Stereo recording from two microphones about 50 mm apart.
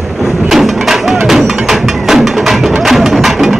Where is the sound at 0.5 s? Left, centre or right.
Centre.